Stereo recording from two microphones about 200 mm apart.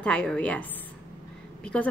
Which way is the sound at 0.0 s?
5° left (ahead or behind).